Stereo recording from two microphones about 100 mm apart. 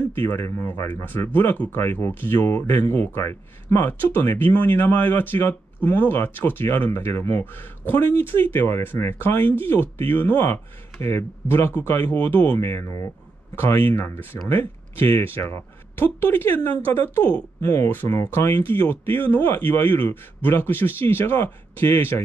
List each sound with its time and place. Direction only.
0.1 s speech: 20° left (ahead or behind)
17.6 s speech: 35° left (ahead or behind)
17.8 s speech: 25° left (ahead or behind)